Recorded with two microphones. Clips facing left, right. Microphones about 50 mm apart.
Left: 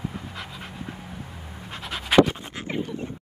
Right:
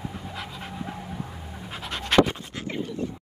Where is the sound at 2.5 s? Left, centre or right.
Centre.